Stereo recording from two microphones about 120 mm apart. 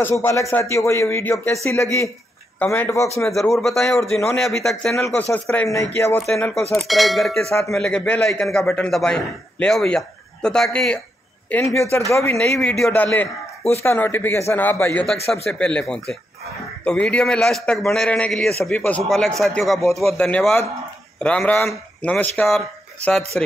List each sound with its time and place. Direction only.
0.0 s speech: 20° left (ahead or behind)
2.6 s a man's voice: 15° left (ahead or behind)
3.3 s a man's voice: centre (ahead or behind)
5.1 s a man's voice: 15° left (ahead or behind)
5.7 s speech: 25° left (ahead or behind)
6.1 s a man's voice: 5° left (ahead or behind)
11.6 s speech: 25° left (ahead or behind)
12.4 s a man's voice: 5° left (ahead or behind)
15.3 s a man's voice: 5° left (ahead or behind)
23.3 s a man's voice: 5° left (ahead or behind)